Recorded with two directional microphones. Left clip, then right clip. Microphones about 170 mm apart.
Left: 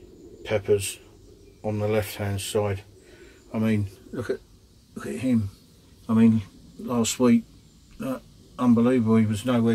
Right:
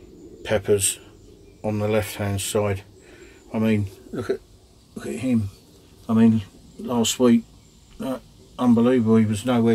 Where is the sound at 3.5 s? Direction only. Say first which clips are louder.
Right 4 dB; 10° right (ahead or behind).